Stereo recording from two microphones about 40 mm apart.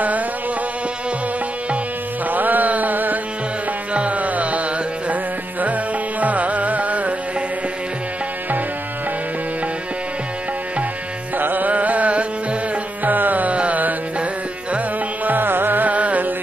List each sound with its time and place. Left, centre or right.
2.2 s music: right
3.9 s music: right
11.3 s music: right
13.0 s music: right
15.2 s music: right
15.9 s music: right